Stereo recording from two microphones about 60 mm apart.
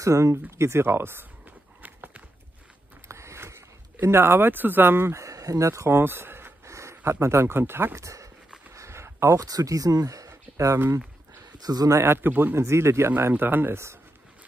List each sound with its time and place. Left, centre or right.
0.0 s speech: right
0.5 s walk: right
3.1 s a sound: right
5.3 s a sound: right
5.7 s speech: right
6.6 s a sound: right
7.1 s speech: right
7.9 s speech: right
8.7 s a sound: right
9.4 s speech: right
11.6 s speech: right
12.0 s speech: right
12.5 s speech: right
13.1 s speech: right